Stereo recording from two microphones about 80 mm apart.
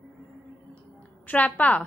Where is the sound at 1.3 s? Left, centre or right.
Centre.